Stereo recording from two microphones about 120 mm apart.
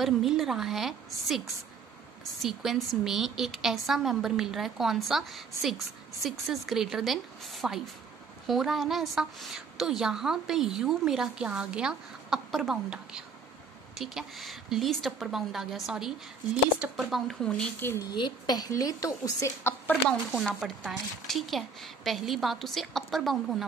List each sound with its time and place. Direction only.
0.0 s a woman's voice: 5° right (ahead or behind)
2.4 s a woman's voice: centre (ahead or behind)
17.7 s a woman's voice: 20° left (ahead or behind)
18.0 s a woman's voice: 35° left (ahead or behind)
20.2 s a woman's voice: centre (ahead or behind)